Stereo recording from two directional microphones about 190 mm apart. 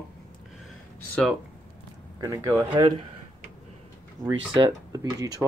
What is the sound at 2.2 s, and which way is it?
Speech, 15° right (ahead or behind).